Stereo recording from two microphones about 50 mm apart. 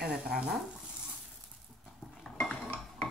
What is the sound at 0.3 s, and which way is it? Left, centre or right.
Speech, centre.